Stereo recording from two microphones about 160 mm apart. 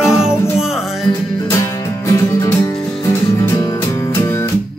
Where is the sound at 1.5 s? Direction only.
20° left (ahead or behind).